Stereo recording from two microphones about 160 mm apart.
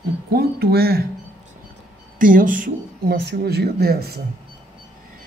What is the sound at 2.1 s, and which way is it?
Speech, 55° right (ahead or behind).